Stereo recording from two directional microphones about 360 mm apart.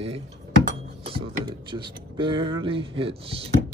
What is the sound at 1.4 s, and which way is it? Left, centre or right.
Speech, centre.